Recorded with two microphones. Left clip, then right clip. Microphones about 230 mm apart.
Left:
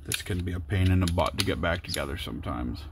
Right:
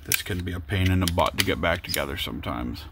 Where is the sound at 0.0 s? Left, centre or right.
Centre.